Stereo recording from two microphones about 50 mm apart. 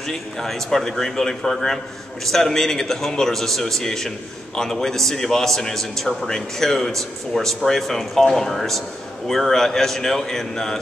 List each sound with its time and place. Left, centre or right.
0.0 s a man's voice: centre